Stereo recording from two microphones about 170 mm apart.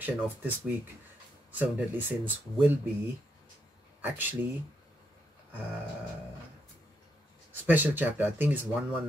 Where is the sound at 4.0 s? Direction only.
10° right (ahead or behind).